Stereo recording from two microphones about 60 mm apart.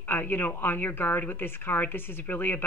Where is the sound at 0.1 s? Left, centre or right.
Left.